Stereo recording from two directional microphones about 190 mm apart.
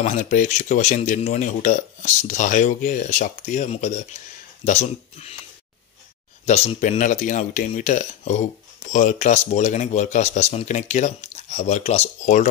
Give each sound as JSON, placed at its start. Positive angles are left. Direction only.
{"t": 0.0, "sound": "speech", "side_deg": 40}
{"t": 6.4, "sound": "speech", "side_deg": 35}